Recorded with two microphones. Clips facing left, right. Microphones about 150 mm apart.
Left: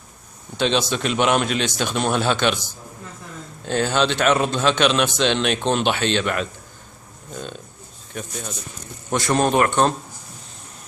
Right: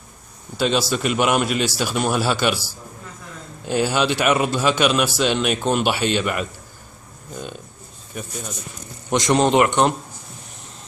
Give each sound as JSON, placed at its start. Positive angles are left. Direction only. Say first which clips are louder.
{"t": 0.6, "sound": "a man's voice", "louder": "right 1 dB", "side_deg": -5}
{"t": 8.1, "sound": "a man's voice", "louder": "even", "side_deg": -5}
{"t": 9.1, "sound": "a man's voice", "louder": "right 2 dB", "side_deg": -20}